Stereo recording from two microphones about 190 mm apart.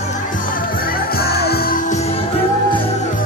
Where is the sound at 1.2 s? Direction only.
55° left (ahead or behind).